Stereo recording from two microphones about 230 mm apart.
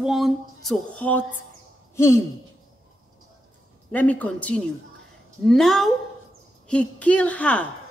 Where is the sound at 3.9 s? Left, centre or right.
Centre.